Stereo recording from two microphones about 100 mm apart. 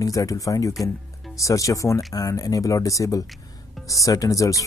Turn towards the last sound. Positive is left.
turn(degrees=35)  # may be behind; listen again after turning